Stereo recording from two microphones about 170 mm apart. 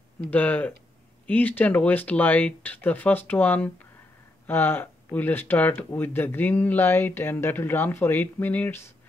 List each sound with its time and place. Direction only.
0.3 s speech: 10° left (ahead or behind)